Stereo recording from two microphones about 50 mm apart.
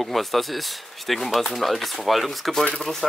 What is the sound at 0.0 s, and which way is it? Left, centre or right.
Speech, centre.